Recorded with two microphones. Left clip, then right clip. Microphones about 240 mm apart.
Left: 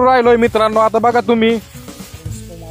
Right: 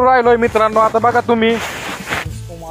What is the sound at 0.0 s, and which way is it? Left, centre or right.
Speech, left.